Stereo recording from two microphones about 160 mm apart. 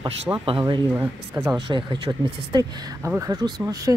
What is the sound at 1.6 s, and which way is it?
Speech, 30° right (ahead or behind).